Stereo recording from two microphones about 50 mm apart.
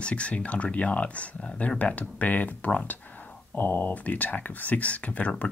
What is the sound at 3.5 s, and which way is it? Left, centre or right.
Speech, left.